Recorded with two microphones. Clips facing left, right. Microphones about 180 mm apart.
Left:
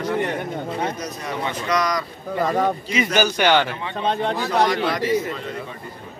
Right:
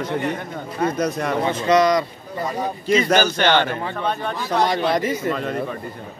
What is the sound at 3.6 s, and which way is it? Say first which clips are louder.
Speech: right 2 dB; 50° right (ahead or behind).